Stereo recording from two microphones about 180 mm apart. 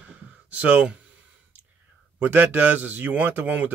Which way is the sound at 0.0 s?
5° right (ahead or behind).